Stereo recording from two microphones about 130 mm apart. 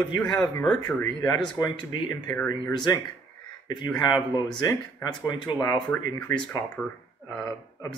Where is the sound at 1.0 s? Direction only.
30° left (ahead or behind).